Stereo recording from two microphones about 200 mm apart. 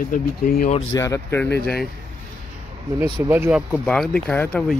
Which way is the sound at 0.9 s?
15° left (ahead or behind).